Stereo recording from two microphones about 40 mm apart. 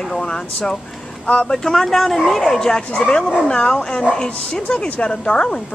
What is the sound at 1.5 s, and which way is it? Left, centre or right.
Speech, centre.